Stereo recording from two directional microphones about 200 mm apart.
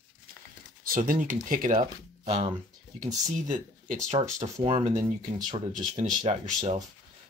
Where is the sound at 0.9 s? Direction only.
45° right (ahead or behind).